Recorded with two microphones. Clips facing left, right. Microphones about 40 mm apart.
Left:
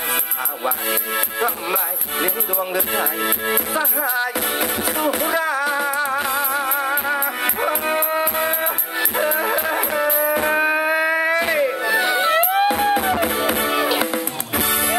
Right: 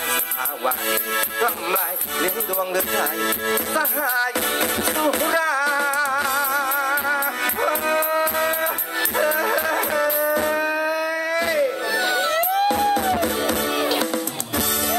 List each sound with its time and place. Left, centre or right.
0.7 s music: centre
4.6 s music: centre
5.5 s music: centre
10.2 s music: left
11.3 s music: left
11.8 s music: centre